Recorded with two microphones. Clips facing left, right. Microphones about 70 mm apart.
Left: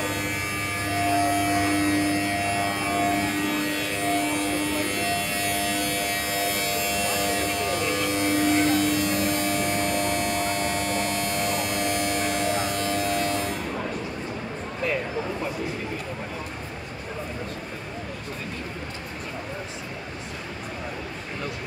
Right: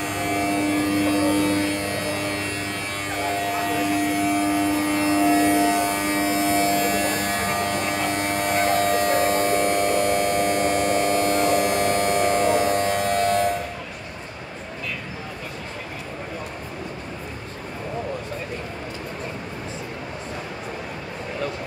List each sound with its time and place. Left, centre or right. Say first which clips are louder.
0.0 s a sound: right 5 dB; centre
0.8 s vehicle: right 3 dB; centre
2.4 s music: left 3 dB; centre
4.0 s vehicle: right 3 dB; centre; by 9.8 s right
10.8 s hum: right 6 dB; right